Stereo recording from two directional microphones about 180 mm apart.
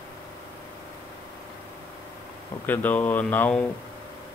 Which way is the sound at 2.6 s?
10° left (ahead or behind).